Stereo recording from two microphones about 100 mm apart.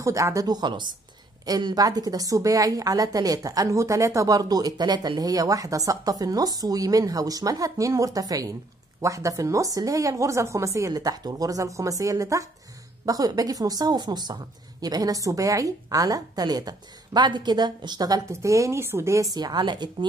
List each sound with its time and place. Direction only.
0.0 s a woman's voice: 35° right (ahead or behind)
18.3 s a woman's voice: 30° right (ahead or behind); by 20.1 s 50° right (ahead or behind)